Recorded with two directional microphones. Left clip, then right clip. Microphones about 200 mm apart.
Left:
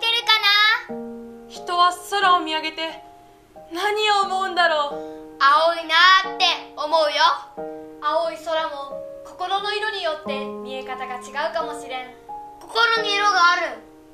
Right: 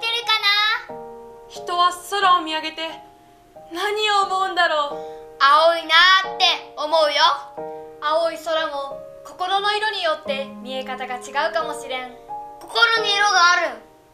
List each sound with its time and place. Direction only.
0.0 s child singing: 20° left (ahead or behind)
1.7 s speech: centre (ahead or behind)
4.9 s music: 15° right (ahead or behind)
8.0 s speech: 25° right (ahead or behind)
12.7 s music: 15° right (ahead or behind)